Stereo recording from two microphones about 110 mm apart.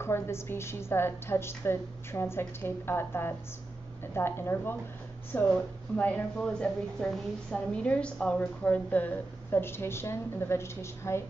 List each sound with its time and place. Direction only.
0.0 s a woman's voice: 25° left (ahead or behind)